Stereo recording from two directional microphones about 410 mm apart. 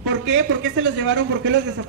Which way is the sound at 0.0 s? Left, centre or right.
Right.